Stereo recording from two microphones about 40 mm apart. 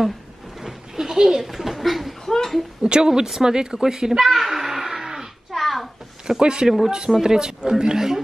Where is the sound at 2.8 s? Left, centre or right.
Right.